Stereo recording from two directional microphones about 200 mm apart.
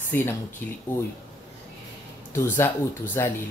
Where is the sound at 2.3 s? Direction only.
10° left (ahead or behind).